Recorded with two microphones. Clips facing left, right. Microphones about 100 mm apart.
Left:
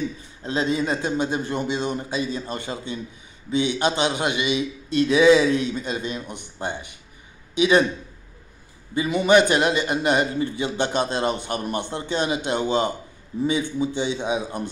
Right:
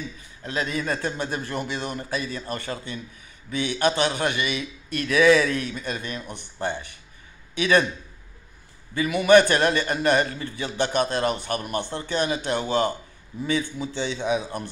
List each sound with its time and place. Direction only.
0.4 s a man's voice: 25° left (ahead or behind)
8.9 s a man's voice: 25° left (ahead or behind)